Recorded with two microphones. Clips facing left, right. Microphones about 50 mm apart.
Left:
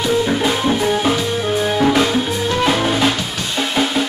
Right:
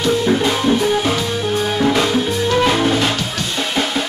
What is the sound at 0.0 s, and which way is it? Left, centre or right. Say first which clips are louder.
Music: right 1 dB; centre.